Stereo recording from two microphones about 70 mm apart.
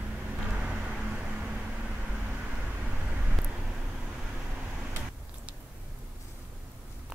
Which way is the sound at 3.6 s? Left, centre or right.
Centre.